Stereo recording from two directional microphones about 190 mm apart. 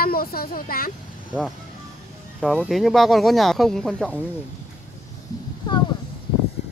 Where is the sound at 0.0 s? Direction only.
50° left (ahead or behind).